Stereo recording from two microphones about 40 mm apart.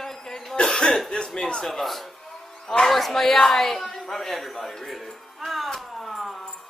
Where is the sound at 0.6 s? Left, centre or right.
Left.